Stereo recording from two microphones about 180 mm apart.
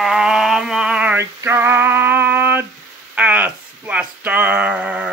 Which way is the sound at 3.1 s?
10° right (ahead or behind).